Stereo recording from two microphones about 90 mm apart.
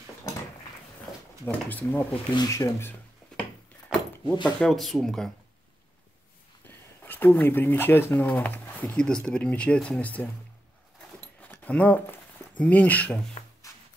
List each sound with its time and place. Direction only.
1.4 s speech: 20° left (ahead or behind)
2.3 s speech: 40° left (ahead or behind)
3.9 s a sound: 10° right (ahead or behind)
4.5 s speech: 5° left (ahead or behind)
7.0 s speech: 20° left (ahead or behind)
11.4 s speech: 15° left (ahead or behind)